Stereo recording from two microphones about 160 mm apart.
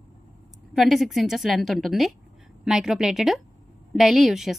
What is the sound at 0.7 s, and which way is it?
A woman's voice, centre (ahead or behind).